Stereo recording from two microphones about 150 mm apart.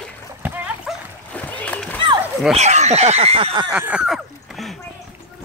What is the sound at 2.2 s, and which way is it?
Bow-wow, 5° right (ahead or behind).